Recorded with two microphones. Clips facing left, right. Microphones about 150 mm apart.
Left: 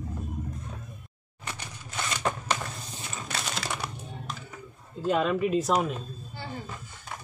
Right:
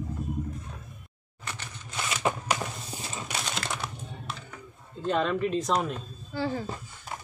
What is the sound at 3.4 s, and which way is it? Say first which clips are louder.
Typing: even; centre (ahead or behind).